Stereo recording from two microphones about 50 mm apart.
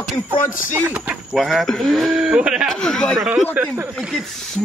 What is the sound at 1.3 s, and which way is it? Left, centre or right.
Speech, centre.